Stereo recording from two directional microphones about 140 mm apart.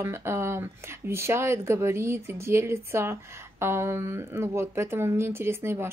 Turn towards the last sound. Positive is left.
turn(degrees=-20)  # may be behind; listen again after turning